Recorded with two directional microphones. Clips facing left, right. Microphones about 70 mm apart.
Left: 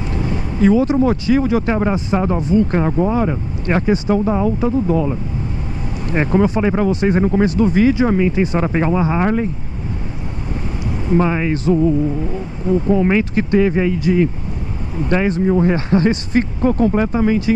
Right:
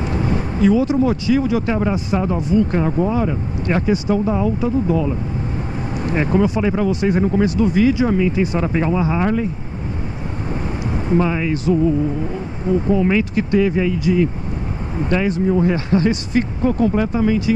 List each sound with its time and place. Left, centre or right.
0.6 s speech: left
6.1 s speech: left
11.1 s speech: left
12.9 s speech: left